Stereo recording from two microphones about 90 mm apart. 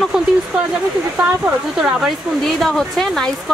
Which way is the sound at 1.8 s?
5° right (ahead or behind).